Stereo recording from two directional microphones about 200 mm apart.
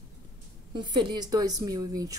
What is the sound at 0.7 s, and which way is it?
A woman's voice, 20° right (ahead or behind).